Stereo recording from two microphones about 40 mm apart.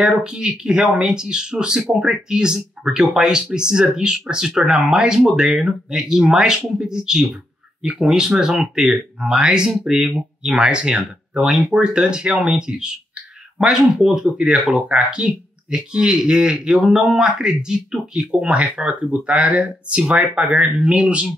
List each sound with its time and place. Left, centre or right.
0.0 s speech: centre
10.6 s speech: right
11.3 s speech: centre
11.7 s speech: centre
14.9 s speech: right
18.5 s speech: right
19.2 s speech: right
20.0 s speech: right